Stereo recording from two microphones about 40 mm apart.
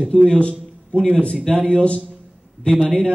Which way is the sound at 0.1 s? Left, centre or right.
Centre.